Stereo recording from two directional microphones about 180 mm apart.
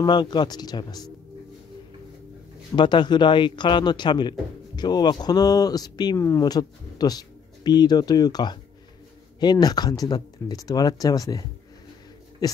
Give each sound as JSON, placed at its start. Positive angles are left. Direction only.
{"t": 0.0, "sound": "speech", "side_deg": 25}
{"t": 2.7, "sound": "speech", "side_deg": 25}